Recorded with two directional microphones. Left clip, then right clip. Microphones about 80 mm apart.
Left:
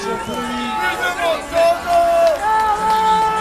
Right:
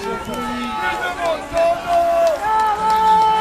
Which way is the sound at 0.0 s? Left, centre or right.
Left.